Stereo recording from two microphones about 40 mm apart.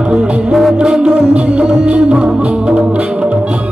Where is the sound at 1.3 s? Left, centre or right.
Right.